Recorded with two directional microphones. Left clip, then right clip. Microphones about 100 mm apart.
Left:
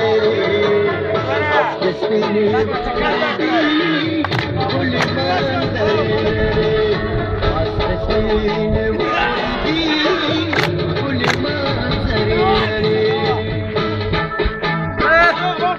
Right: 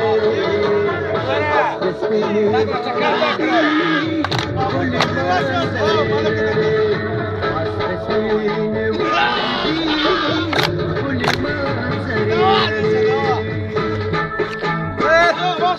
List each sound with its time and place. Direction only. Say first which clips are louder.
0.0 s music: left 1 dB; 25° left (ahead or behind)
3.0 s a sound: right 1 dB; 20° left (ahead or behind)
5.9 s music: even; 20° left (ahead or behind)
15.0 s music: left 1 dB; 35° right (ahead or behind)